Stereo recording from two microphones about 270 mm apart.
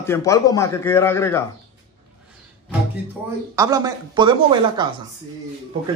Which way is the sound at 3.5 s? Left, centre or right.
Centre.